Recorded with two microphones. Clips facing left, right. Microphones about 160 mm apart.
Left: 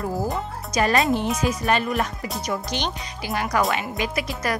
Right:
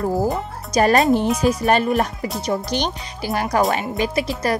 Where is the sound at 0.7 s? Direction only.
45° right (ahead or behind).